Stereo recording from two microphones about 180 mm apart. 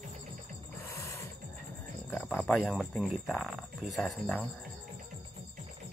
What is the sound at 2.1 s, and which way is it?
Speech, 10° left (ahead or behind).